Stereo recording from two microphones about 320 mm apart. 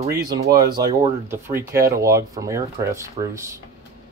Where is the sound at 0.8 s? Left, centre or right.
Centre.